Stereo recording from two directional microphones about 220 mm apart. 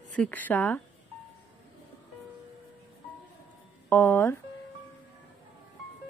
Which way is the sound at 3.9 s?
10° left (ahead or behind).